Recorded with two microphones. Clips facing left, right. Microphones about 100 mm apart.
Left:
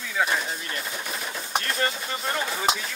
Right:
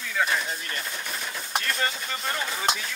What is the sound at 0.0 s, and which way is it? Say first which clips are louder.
Speech: left 1 dB; 5° left (ahead or behind).